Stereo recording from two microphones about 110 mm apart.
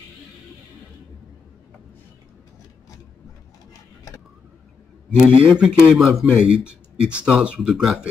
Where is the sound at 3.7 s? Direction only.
30° left (ahead or behind).